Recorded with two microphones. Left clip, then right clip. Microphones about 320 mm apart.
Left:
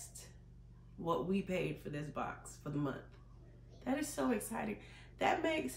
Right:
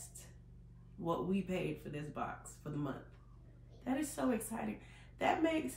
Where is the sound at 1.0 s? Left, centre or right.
Centre.